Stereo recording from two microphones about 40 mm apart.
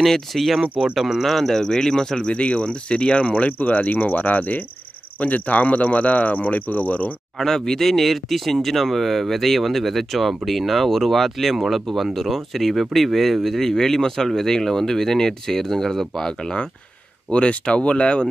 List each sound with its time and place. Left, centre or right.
0.3 s speech: centre
0.9 s speech: centre
1.2 s speech: centre
2.2 s speech: left
7.3 s speech: centre
17.3 s speech: left